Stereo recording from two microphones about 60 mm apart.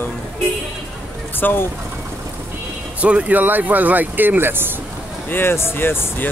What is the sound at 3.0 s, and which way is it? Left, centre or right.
Speech, right.